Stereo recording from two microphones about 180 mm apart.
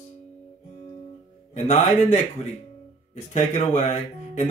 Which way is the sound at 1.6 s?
40° left (ahead or behind).